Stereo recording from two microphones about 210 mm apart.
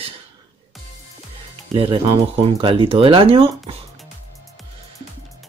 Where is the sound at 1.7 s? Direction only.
25° right (ahead or behind).